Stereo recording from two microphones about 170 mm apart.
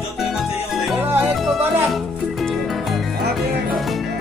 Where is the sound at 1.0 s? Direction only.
10° right (ahead or behind).